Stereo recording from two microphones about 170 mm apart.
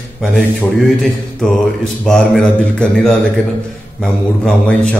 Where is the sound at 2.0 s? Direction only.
5° left (ahead or behind).